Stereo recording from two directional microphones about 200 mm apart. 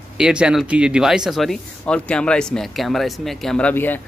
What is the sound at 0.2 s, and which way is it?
Speech, 5° right (ahead or behind).